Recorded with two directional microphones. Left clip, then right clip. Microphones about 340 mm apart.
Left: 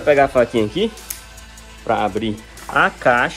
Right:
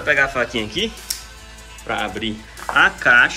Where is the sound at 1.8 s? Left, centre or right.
Centre.